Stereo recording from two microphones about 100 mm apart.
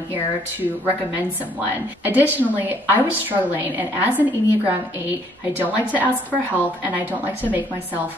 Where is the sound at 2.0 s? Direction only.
15° right (ahead or behind).